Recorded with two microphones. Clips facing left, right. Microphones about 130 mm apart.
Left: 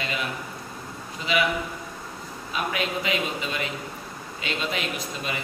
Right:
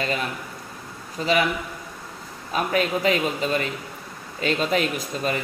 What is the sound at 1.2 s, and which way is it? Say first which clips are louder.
Speech: right 6 dB; 40° right (ahead or behind).